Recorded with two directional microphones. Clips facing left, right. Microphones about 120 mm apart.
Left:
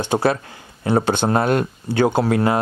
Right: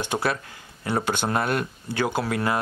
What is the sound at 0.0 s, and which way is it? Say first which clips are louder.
Speech: left 7 dB; 30° left (ahead or behind).